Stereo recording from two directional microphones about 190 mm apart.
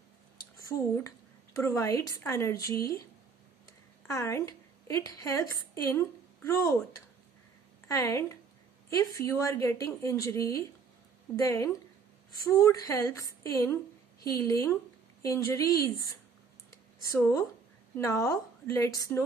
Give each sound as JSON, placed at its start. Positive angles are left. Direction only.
{"t": 0.7, "sound": "a woman's voice", "side_deg": 15}
{"t": 4.1, "sound": "a woman's voice", "side_deg": 15}
{"t": 7.9, "sound": "a woman's voice", "side_deg": 15}
{"t": 16.7, "sound": "a sound", "side_deg": 15}
{"t": 17.9, "sound": "a woman's voice", "side_deg": 15}